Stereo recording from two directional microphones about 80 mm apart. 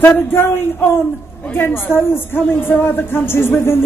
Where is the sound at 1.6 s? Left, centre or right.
Left.